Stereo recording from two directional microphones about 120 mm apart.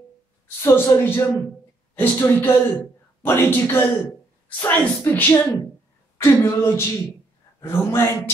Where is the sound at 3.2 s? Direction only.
20° left (ahead or behind).